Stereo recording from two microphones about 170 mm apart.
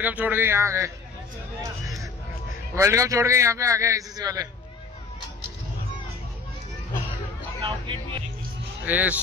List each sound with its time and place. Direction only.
0.0 s a man's voice: 10° right (ahead or behind)
2.7 s a man's voice: 15° right (ahead or behind)
7.6 s speech: 30° right (ahead or behind)
8.8 s a man's voice: 10° right (ahead or behind)